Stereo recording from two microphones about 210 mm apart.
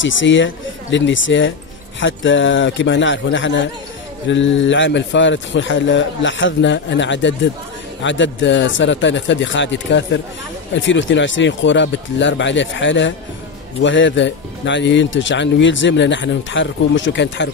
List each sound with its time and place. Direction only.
0.0 s speech: 65° left (ahead or behind)